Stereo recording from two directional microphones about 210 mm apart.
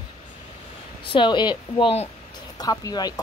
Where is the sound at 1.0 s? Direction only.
25° left (ahead or behind).